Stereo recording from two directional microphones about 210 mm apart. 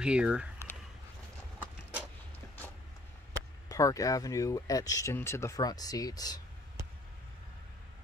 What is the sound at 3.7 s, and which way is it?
Speech, 15° left (ahead or behind).